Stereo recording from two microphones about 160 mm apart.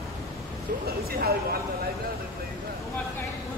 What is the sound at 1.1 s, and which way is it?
Speech, 70° right (ahead or behind).